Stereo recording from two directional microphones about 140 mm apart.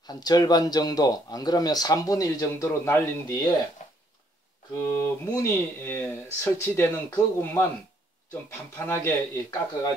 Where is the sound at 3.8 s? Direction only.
55° left (ahead or behind).